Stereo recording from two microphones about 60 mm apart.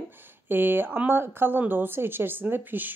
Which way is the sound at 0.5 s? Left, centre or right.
Right.